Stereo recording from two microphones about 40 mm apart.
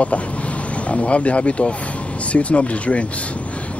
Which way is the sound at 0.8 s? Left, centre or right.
Left.